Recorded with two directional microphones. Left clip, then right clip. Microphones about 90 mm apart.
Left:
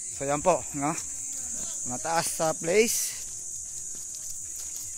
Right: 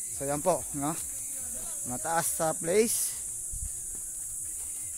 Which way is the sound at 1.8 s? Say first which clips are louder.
Left 2 dB; 15° left (ahead or behind).